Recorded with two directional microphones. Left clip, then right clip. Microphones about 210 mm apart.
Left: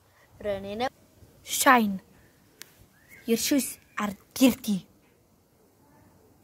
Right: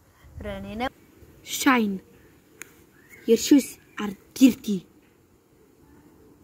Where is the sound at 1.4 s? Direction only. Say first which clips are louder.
Left 2 dB; 45° left (ahead or behind).